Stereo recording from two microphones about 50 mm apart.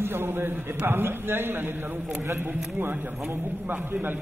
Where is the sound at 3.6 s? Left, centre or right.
Right.